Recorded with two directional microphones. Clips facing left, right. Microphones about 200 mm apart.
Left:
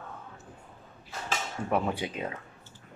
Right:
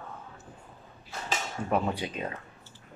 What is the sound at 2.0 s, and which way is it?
Speech, 15° left (ahead or behind).